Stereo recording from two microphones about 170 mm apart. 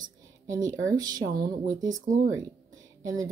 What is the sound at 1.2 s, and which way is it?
Speech, 55° right (ahead or behind).